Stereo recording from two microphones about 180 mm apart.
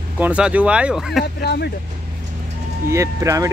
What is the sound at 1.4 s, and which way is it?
Speech, 65° left (ahead or behind).